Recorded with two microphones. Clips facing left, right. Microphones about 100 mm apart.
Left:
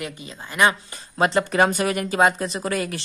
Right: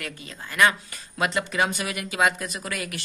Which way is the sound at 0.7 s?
30° left (ahead or behind).